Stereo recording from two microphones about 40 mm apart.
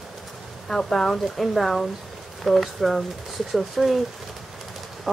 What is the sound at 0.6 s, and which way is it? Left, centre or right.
Speech, centre.